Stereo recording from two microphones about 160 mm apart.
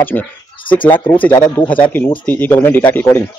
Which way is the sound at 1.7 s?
10° left (ahead or behind).